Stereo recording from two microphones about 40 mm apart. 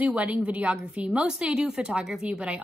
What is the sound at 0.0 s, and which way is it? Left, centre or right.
Speech, right.